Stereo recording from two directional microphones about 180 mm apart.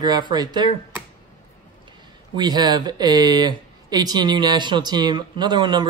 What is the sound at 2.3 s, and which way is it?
Speech, 25° right (ahead or behind).